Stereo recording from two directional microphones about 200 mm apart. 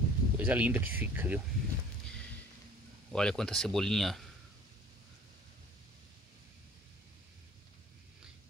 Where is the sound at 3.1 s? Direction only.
5° left (ahead or behind).